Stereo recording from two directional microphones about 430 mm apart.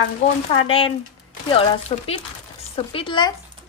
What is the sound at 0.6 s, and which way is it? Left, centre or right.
A woman's voice, centre.